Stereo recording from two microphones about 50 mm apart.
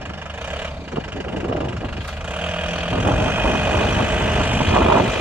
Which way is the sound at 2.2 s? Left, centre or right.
Right.